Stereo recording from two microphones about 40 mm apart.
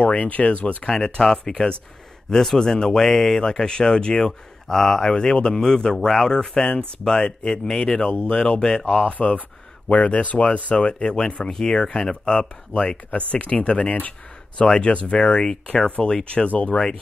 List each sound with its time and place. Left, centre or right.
0.0 s speech: left
0.9 s a man's voice: centre
4.3 s a man's voice: centre
8.8 s speech: left